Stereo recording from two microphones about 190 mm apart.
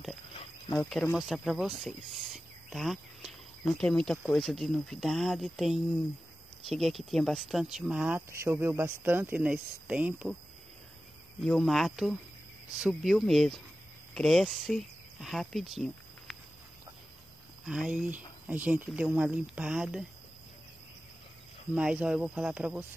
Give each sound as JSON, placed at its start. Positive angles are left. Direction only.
{"t": 0.3, "sound": "cricket", "side_deg": 30}
{"t": 0.7, "sound": "speech", "side_deg": 0}
{"t": 1.8, "sound": "cricket", "side_deg": 0}
{"t": 3.8, "sound": "speech", "side_deg": 5}
{"t": 11.4, "sound": "speech", "side_deg": 0}
{"t": 17.6, "sound": "speech", "side_deg": -5}
{"t": 21.7, "sound": "speech", "side_deg": -5}